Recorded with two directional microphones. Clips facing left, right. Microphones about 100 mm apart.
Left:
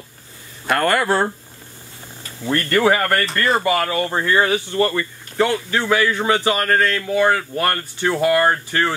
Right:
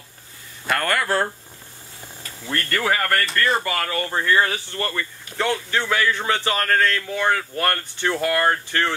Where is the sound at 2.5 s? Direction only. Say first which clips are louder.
Left 7 dB; 25° left (ahead or behind).